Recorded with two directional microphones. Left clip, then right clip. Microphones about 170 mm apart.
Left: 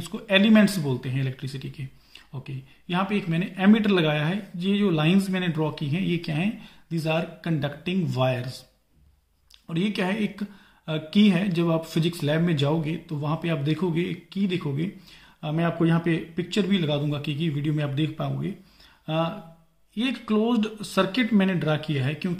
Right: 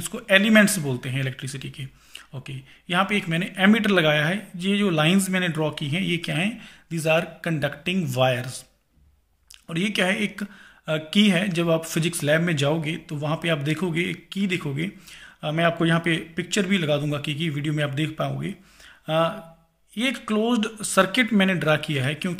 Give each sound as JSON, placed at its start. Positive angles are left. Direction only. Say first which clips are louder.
{"t": 0.0, "sound": "speech", "louder": "right 3 dB", "side_deg": -15}
{"t": 9.7, "sound": "speech", "louder": "right 4 dB", "side_deg": -15}